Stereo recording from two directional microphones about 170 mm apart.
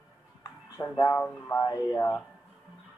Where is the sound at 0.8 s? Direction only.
15° left (ahead or behind).